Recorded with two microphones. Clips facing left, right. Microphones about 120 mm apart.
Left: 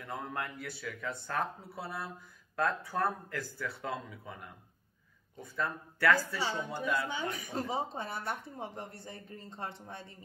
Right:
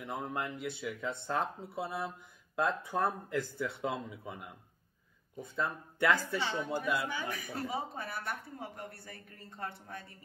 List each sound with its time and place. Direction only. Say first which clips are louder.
0.0 s speech: right 1 dB; 20° right (ahead or behind)
7.1 s speech: left 1 dB; 25° left (ahead or behind)